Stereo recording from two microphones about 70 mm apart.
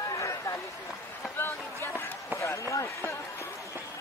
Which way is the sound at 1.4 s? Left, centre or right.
Left.